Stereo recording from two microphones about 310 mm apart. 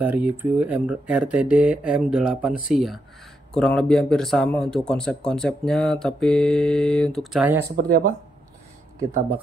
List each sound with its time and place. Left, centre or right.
0.0 s speech: centre
7.7 s speech: right